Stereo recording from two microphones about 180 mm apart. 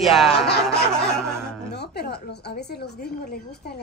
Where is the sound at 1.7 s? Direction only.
65° left (ahead or behind).